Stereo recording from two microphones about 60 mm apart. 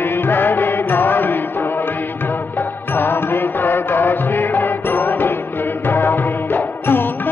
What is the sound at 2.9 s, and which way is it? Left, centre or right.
Music, left.